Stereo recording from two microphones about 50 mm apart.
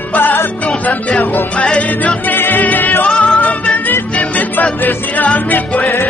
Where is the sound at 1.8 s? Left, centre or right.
Left.